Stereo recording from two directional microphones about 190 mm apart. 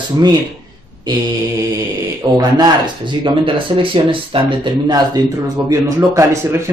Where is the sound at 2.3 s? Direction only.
20° right (ahead or behind).